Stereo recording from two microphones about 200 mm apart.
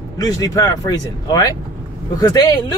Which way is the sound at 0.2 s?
15° left (ahead or behind).